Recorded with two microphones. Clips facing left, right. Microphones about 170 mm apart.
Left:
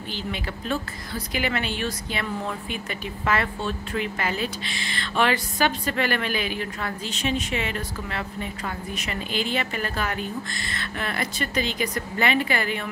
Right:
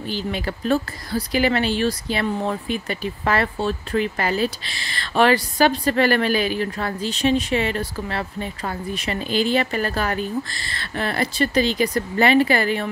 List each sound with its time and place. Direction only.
0.1 s speech: 40° right (ahead or behind)